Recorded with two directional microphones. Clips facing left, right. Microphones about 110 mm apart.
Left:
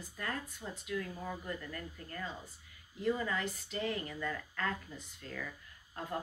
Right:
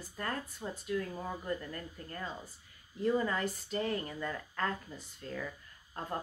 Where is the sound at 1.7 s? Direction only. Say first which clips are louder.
Right 1 dB; 35° right (ahead or behind).